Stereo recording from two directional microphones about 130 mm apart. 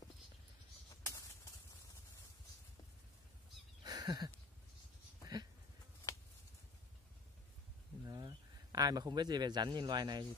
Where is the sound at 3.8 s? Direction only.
30° right (ahead or behind).